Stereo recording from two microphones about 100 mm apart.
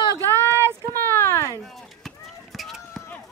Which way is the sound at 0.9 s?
25° left (ahead or behind).